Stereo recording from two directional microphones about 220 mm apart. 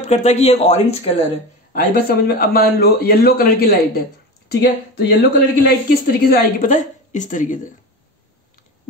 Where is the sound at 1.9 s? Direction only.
45° left (ahead or behind).